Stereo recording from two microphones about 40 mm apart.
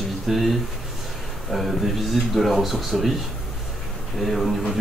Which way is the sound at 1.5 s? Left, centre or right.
Centre.